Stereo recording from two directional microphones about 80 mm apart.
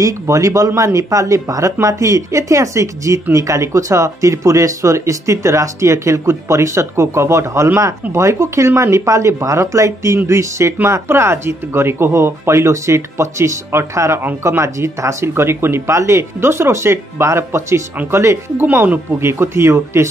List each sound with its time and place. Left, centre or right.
0.0 s speech: right
18.6 s speech: right